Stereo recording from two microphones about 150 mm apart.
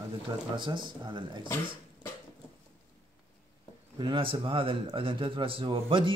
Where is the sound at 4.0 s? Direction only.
35° right (ahead or behind).